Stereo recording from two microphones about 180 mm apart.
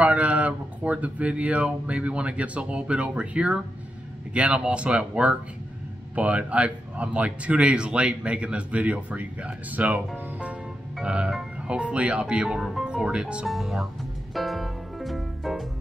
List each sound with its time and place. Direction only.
0.0 s speech: 5° right (ahead or behind)
14.3 s music: centre (ahead or behind)